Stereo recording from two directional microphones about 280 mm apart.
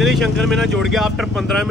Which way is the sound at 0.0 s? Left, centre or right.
Centre.